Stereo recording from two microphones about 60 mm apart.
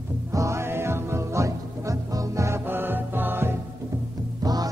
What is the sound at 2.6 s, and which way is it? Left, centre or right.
Music, right.